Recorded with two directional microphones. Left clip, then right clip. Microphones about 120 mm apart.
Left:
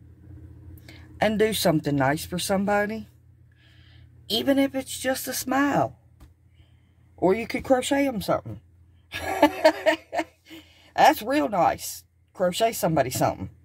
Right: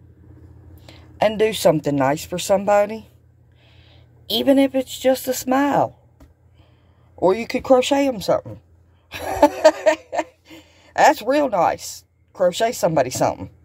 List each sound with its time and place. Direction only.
0.8 s speech: centre (ahead or behind)
7.2 s speech: 10° right (ahead or behind)
9.1 s a sound: 15° right (ahead or behind)